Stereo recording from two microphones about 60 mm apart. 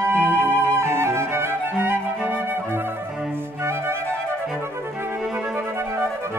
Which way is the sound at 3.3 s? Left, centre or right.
Right.